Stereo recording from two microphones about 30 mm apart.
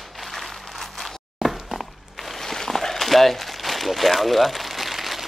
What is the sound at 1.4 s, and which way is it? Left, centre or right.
Walk, centre.